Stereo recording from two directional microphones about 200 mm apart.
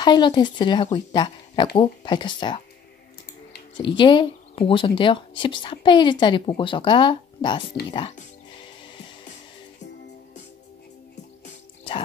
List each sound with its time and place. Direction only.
0.0 s speech: 20° left (ahead or behind)
3.7 s speech: 25° left (ahead or behind)